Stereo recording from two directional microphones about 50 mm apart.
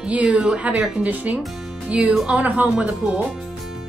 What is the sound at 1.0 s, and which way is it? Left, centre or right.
A woman's voice, right.